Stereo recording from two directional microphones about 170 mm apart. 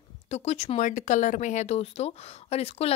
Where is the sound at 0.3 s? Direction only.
40° left (ahead or behind).